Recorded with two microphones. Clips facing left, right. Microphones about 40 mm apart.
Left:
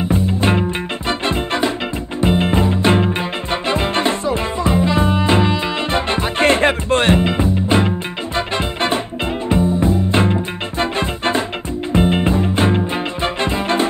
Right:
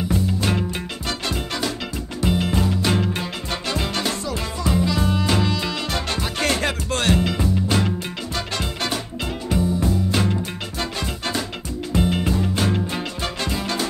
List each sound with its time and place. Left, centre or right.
0.1 s music: left